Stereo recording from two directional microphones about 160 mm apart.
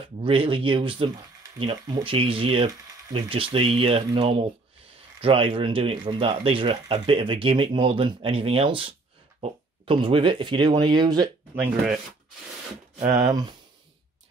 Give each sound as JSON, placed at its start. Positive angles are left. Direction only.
{"t": 0.2, "sound": "speech", "side_deg": -35}
{"t": 13.0, "sound": "speech", "side_deg": -20}